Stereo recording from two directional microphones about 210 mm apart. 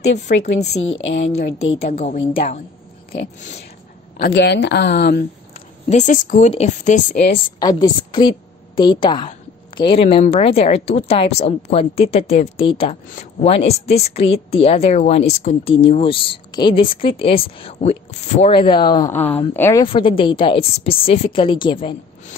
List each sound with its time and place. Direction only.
0.0 s speech: 55° left (ahead or behind)
1.8 s speech: 35° left (ahead or behind)
4.2 s speech: 55° left (ahead or behind)
5.9 s speech: 35° left (ahead or behind)
7.3 s a woman's voice: 20° left (ahead or behind)
19.8 s a woman's voice: 25° left (ahead or behind)